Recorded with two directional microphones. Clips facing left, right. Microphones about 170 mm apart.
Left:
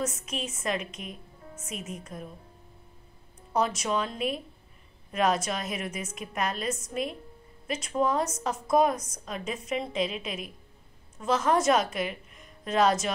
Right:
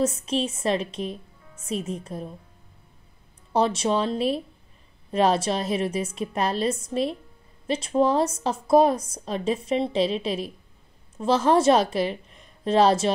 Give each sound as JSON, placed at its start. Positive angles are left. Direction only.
{"t": 0.0, "sound": "speech", "side_deg": -30}
{"t": 3.5, "sound": "a woman's voice", "side_deg": -30}